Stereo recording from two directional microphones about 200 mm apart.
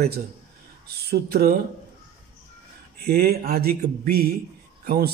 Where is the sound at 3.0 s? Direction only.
50° right (ahead or behind).